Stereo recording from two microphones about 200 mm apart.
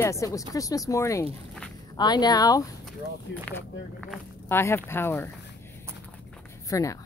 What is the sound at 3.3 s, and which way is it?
Speech, 60° left (ahead or behind).